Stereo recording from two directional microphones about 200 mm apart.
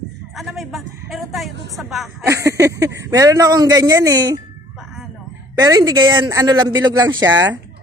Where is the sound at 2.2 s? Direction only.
15° right (ahead or behind).